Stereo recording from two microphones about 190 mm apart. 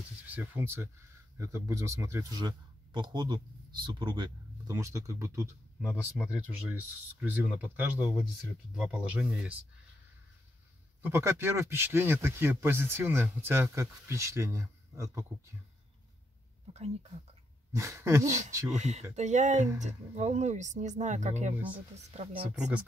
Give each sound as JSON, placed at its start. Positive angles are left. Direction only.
{"t": 0.3, "sound": "a man's voice", "side_deg": -10}
{"t": 5.8, "sound": "a man's voice", "side_deg": 0}
{"t": 11.0, "sound": "a man's voice", "side_deg": -15}
{"t": 17.7, "sound": "a man's voice", "side_deg": -15}
{"t": 18.7, "sound": "speech", "side_deg": -35}
{"t": 22.6, "sound": "speech", "side_deg": -5}